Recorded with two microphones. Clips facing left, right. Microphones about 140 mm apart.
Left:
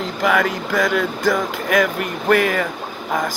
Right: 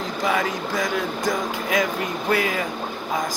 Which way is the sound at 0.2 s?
70° left (ahead or behind).